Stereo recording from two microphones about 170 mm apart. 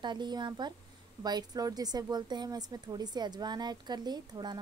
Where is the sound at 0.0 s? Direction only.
25° right (ahead or behind).